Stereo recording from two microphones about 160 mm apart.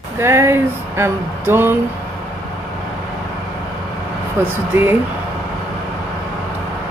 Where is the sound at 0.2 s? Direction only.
15° right (ahead or behind).